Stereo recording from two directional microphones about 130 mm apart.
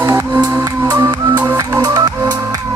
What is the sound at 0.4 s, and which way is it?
Music, 20° right (ahead or behind).